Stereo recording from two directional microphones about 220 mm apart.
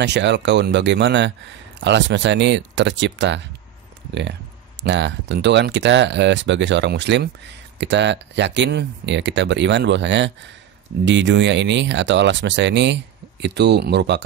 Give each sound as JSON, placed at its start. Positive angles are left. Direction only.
{"t": 0.0, "sound": "speech", "side_deg": -50}